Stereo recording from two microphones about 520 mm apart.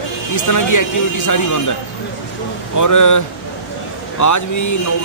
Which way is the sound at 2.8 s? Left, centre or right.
Left.